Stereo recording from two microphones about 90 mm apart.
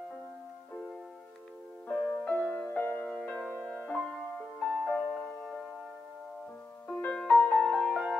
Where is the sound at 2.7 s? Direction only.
25° left (ahead or behind).